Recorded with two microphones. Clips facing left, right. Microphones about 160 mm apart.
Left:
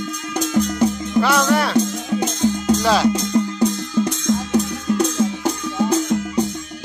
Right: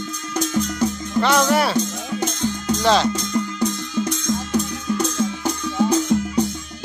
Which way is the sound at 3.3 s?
25° left (ahead or behind).